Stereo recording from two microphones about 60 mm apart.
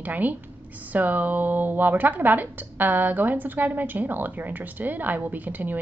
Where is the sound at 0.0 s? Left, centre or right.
Right.